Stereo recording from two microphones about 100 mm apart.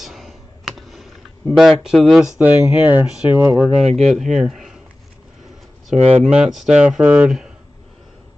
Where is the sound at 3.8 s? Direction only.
90° right.